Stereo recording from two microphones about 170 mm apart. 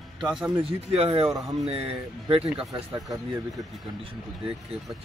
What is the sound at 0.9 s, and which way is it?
Speech, 35° right (ahead or behind).